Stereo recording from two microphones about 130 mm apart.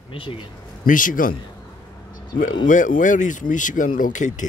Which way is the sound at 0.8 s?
90° left.